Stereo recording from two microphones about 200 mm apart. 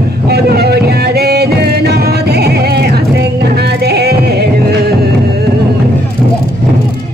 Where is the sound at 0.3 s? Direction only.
50° right (ahead or behind).